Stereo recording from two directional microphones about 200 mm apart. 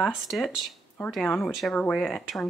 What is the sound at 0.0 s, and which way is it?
Speech, centre (ahead or behind).